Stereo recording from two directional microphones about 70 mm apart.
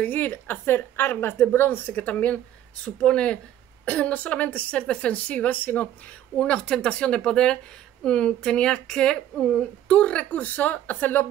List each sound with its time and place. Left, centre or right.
0.0 s a woman's voice: left